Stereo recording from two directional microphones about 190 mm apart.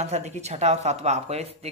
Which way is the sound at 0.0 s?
35° right (ahead or behind).